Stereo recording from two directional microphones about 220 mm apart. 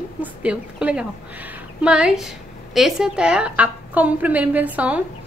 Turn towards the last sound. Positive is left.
turn(degrees=-5)  # may be behind; listen again after turning